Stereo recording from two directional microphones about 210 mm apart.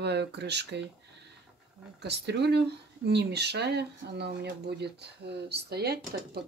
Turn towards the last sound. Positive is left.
turn(degrees=-50)  # may be behind; listen again after turning